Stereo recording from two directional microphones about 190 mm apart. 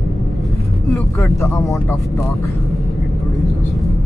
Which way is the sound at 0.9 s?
15° left (ahead or behind).